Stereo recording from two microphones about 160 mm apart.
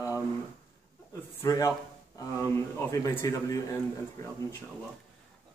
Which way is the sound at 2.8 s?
20° left (ahead or behind).